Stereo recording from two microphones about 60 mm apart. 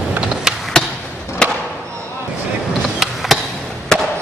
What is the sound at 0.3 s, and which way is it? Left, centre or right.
Skateboard, centre.